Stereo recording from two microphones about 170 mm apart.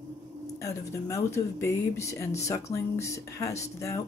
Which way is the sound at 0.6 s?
20° left (ahead or behind).